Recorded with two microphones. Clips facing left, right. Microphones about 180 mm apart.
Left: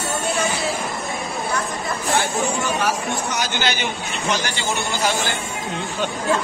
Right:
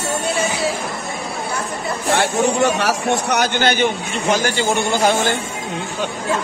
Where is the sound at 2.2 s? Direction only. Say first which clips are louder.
Right 8 dB; 70° right (ahead or behind); by 5.1 s 50° right (ahead or behind).